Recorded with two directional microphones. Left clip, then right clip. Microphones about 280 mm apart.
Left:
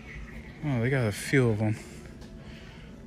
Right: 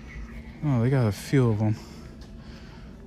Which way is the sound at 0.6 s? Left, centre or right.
Centre.